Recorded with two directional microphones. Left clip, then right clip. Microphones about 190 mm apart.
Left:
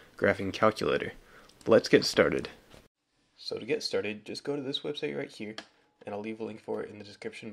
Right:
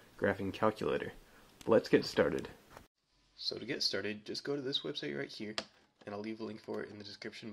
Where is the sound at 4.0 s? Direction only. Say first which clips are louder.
Left 5 dB; 20° left (ahead or behind).